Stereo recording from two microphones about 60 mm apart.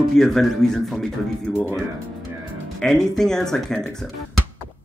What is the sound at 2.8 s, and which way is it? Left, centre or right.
Speech, centre.